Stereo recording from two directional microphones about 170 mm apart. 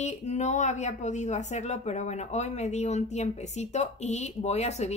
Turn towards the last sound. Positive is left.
turn(degrees=40)  # may be behind; listen again after turning